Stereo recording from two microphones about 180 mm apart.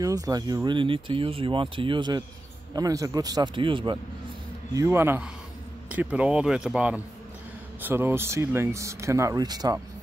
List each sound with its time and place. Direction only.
0.0 s speech: 20° right (ahead or behind)
4.7 s speech: 15° right (ahead or behind)